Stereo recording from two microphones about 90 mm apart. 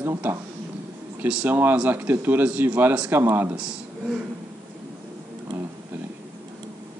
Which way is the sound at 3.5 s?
10° right (ahead or behind).